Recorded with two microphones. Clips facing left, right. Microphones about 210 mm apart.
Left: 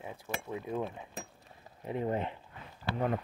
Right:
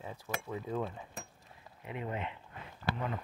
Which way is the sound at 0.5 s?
15° left (ahead or behind).